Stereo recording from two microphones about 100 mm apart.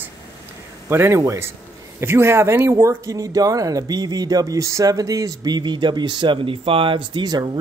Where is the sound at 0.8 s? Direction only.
25° right (ahead or behind).